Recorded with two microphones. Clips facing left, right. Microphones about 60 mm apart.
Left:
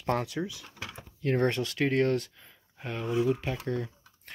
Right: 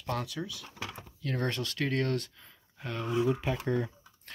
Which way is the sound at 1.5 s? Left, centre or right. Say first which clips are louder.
Left 4 dB; centre.